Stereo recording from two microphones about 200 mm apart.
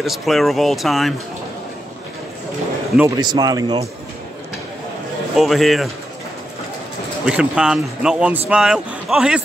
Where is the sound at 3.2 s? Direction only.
20° right (ahead or behind).